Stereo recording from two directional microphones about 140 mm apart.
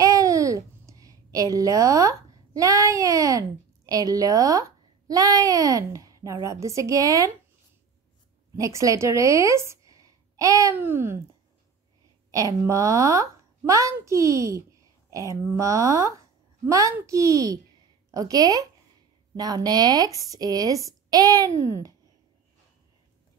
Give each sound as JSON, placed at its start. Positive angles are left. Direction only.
{"t": 0.0, "sound": "a child's voice", "side_deg": -25}
{"t": 8.5, "sound": "a woman's voice", "side_deg": -20}
{"t": 12.3, "sound": "a woman's voice", "side_deg": -25}